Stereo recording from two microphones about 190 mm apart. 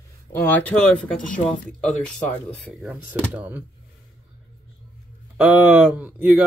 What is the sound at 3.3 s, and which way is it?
Speech, 10° right (ahead or behind).